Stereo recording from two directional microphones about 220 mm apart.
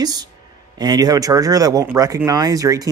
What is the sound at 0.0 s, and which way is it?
Speech, 20° right (ahead or behind).